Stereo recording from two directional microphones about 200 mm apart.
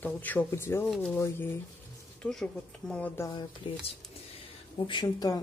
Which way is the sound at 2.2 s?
5° left (ahead or behind).